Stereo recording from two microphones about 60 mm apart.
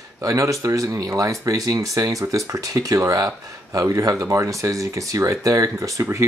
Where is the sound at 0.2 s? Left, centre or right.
Right.